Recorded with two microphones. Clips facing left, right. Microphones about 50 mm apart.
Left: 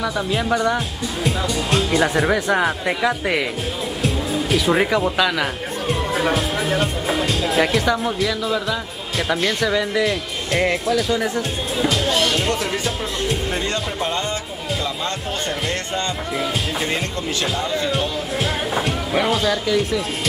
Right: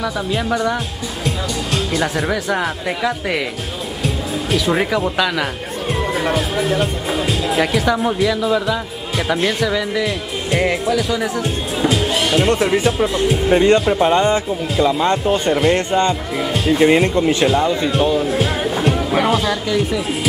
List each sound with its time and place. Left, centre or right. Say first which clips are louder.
0.0 s speech: right 1 dB; centre
1.9 s speech: left 2 dB; centre
11.9 s music: right 3 dB; centre
12.4 s speech: right 7 dB; centre
16.3 s speech: right 5 dB; centre
16.8 s speech: right 11 dB; right; by 20.0 s centre